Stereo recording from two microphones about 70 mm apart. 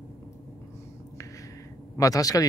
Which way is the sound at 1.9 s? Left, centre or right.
Left.